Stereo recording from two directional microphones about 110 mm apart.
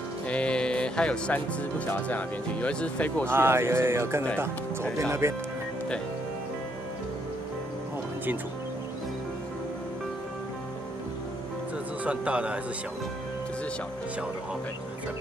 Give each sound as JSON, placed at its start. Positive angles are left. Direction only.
{"t": 0.3, "sound": "speech", "side_deg": 10}
{"t": 3.3, "sound": "a man's voice", "side_deg": -20}
{"t": 5.2, "sound": "a man's voice", "side_deg": -25}
{"t": 12.0, "sound": "speech", "side_deg": -10}